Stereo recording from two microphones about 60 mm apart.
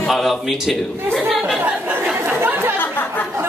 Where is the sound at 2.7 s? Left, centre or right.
Left.